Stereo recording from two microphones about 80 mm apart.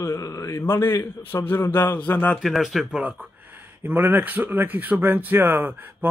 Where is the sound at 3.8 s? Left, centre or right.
Right.